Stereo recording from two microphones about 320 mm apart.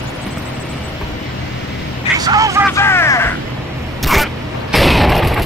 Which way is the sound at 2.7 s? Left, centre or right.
Centre.